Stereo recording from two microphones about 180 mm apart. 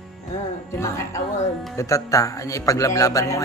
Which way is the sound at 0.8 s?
15° left (ahead or behind).